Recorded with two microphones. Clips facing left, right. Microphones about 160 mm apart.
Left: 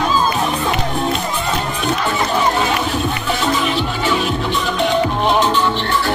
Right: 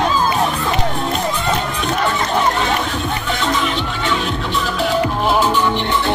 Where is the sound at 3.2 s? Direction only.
5° left (ahead or behind).